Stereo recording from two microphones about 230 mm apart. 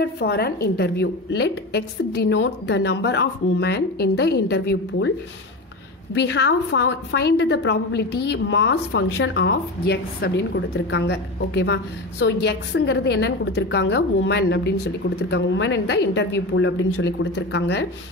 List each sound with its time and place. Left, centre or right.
0.0 s a woman's voice: left
6.1 s a woman's voice: left